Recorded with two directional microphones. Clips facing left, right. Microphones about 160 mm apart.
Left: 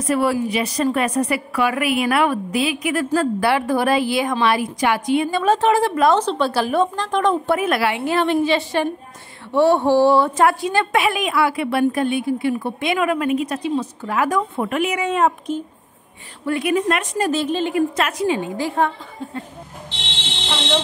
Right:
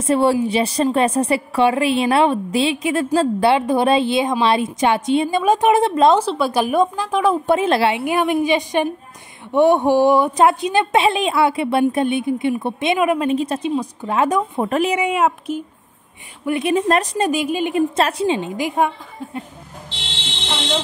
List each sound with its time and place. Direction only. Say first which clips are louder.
0.0 s a woman's voice: right 3 dB; 25° right (ahead or behind)
6.1 s a woman's voice: right 1 dB; 10° right (ahead or behind)
7.4 s a woman's voice: right 3 dB; 25° right (ahead or behind)
8.0 s a woman's voice: even; 15° right (ahead or behind)
14.7 s speech: right 5 dB; 35° right (ahead or behind)
15.0 s a woman's voice: right 1 dB; 10° right (ahead or behind)
16.4 s a woman's voice: right 2 dB; 25° right (ahead or behind)
17.2 s a woman's voice: right 1 dB; 10° right (ahead or behind)
17.7 s a woman's voice: right 2 dB; 30° right (ahead or behind)
20.4 s speech: left 1 dB; centre (ahead or behind)